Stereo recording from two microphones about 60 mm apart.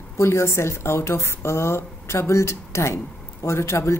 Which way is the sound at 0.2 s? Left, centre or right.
Left.